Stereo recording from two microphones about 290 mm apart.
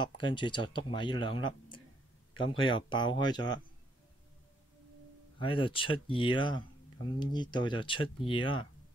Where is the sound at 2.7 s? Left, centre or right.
Centre.